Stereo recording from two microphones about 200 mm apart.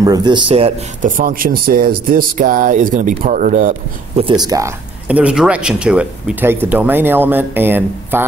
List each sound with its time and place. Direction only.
0.0 s speech: 20° right (ahead or behind); by 3.7 s 40° right (ahead or behind)
4.2 s speech: 20° right (ahead or behind)
5.0 s speech: 5° right (ahead or behind)